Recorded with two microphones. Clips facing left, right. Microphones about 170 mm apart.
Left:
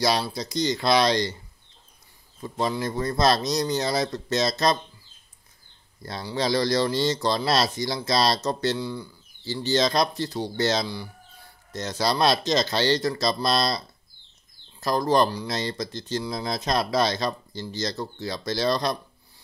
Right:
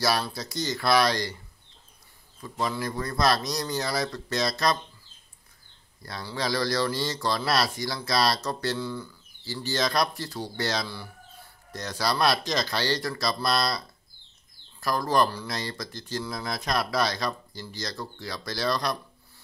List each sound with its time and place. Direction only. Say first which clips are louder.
0.0 s speech: left 3 dB; 20° left (ahead or behind)
2.4 s speech: left 3 dB; 25° left (ahead or behind)
6.0 s speech: left 4 dB; 25° left (ahead or behind)